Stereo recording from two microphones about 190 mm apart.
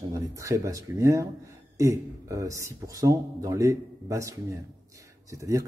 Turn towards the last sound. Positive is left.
turn(degrees=-15)  # may be behind; listen again after turning